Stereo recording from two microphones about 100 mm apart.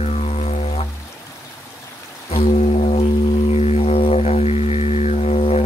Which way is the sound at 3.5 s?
90° left.